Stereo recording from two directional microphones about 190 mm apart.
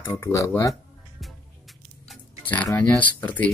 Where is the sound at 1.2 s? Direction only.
Centre (ahead or behind).